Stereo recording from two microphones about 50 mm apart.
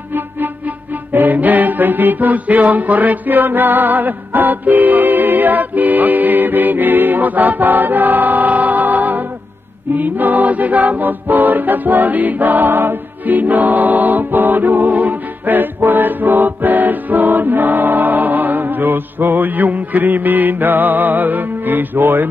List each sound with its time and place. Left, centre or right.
1.1 s music: right
9.9 s choir: right